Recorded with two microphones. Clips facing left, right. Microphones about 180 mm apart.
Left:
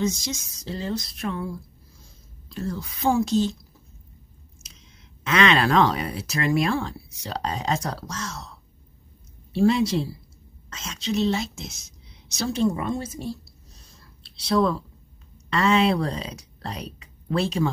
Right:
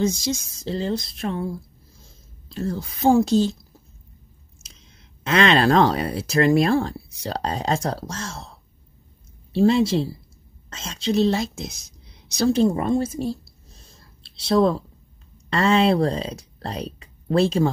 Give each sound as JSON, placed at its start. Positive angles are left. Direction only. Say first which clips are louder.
{"t": 0.0, "sound": "speech", "louder": "right 4 dB", "side_deg": -30}
{"t": 2.5, "sound": "speech", "louder": "right 3 dB", "side_deg": -30}
{"t": 5.2, "sound": "speech", "louder": "right 3 dB", "side_deg": -35}